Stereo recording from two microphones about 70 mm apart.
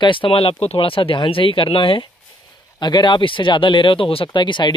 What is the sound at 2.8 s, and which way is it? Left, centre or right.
Speech, left.